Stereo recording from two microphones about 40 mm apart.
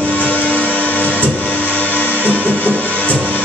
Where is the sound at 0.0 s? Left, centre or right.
Left.